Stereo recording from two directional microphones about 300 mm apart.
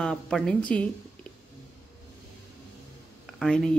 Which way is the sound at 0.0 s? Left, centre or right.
Centre.